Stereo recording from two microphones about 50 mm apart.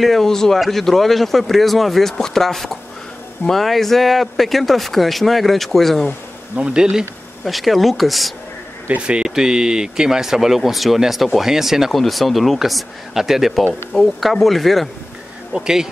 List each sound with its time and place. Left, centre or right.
0.0 s speech: centre
6.5 s speech: centre
7.4 s speech: centre
9.0 s speech: centre
15.5 s speech: centre